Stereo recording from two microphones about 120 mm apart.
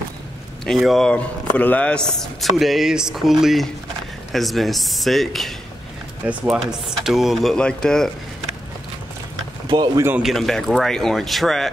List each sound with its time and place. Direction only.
0.7 s speech: centre (ahead or behind)
6.2 s speech: 10° right (ahead or behind); by 8.1 s 5° left (ahead or behind)
9.7 s speech: 35° right (ahead or behind)
10.2 s speech: centre (ahead or behind)